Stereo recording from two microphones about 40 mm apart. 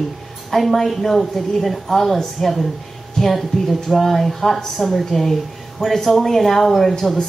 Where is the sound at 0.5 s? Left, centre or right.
Centre.